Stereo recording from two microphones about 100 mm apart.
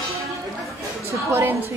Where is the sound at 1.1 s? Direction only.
20° right (ahead or behind).